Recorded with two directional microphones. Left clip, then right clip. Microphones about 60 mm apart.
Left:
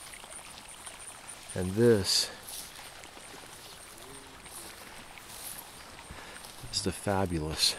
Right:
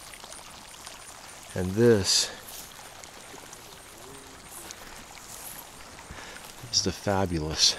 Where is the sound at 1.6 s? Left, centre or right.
Centre.